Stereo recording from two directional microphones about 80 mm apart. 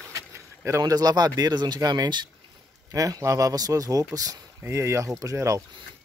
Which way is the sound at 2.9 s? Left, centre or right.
Right.